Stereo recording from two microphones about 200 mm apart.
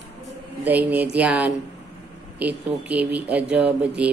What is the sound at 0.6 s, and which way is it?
Speech, 10° right (ahead or behind).